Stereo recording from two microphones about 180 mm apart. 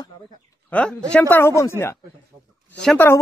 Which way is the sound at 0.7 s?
5° left (ahead or behind).